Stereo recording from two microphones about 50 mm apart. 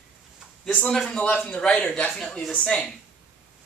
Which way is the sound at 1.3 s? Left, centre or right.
Left.